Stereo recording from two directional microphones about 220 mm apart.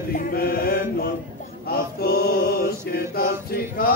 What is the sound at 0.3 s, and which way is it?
Mantra, 40° left (ahead or behind).